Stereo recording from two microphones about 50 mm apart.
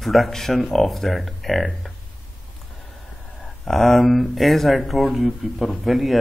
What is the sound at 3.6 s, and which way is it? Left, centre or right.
Speech, centre.